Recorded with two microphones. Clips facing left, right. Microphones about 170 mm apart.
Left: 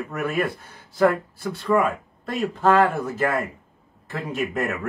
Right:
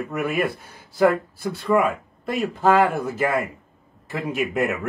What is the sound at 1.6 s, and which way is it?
Speech, 10° right (ahead or behind).